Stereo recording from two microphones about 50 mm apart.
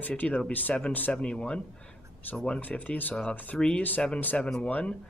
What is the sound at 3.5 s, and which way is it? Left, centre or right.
Speech, centre.